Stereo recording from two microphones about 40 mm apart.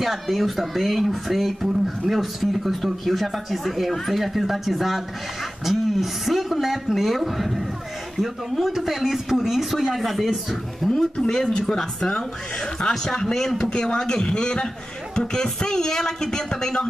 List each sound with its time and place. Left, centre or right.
0.0 s speech: centre
11.0 s a man's voice: centre